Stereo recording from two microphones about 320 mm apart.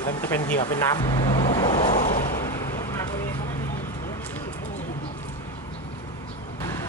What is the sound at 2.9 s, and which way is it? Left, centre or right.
Vehicle, centre.